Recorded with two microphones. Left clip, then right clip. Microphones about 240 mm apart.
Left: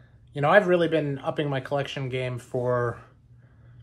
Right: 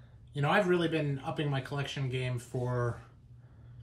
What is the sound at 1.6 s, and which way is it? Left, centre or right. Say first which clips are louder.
Speech: left 10 dB; centre.